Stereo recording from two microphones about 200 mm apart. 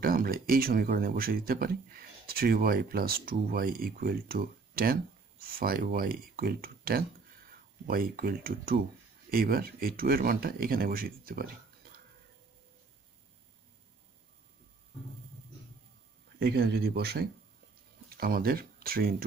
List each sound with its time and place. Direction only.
0.0 s speech: 45° right (ahead or behind)
16.3 s speech: 50° right (ahead or behind)